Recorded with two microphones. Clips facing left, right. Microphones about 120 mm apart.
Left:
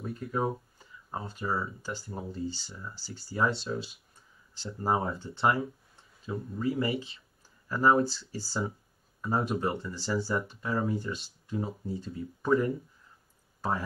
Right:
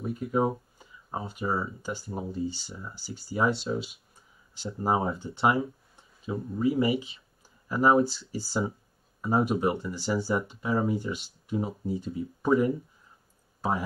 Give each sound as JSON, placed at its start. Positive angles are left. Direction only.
{"t": 0.2, "sound": "speech", "side_deg": -25}